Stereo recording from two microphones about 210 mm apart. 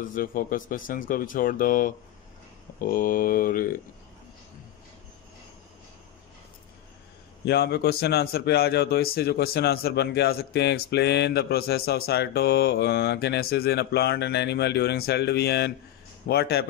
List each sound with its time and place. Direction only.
0.0 s speech: 40° left (ahead or behind)
7.4 s speech: 50° left (ahead or behind)